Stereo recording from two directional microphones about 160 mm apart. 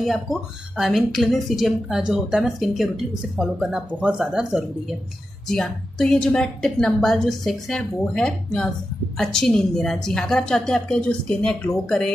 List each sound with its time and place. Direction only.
0.0 s a woman's voice: centre (ahead or behind)